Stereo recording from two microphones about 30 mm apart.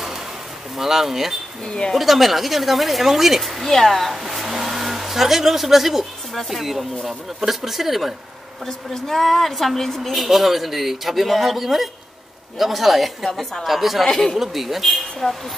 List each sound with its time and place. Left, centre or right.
0.7 s speech: centre
3.6 s speech: centre
8.6 s a woman's voice: centre
14.0 s a woman's voice: centre
14.4 s speech: centre
14.9 s speech: centre